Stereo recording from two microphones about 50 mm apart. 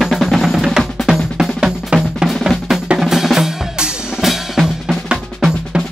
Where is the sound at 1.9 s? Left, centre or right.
Right.